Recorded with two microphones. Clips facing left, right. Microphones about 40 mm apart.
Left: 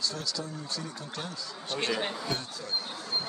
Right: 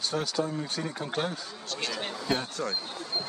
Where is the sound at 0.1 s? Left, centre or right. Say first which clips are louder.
Right 7 dB; right.